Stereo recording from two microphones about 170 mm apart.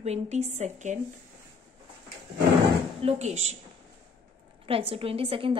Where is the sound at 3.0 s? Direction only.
40° right (ahead or behind).